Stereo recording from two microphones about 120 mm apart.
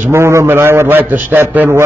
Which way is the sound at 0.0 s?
20° right (ahead or behind).